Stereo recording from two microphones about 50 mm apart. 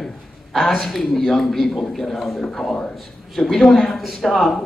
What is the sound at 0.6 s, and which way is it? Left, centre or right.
A man's voice, centre.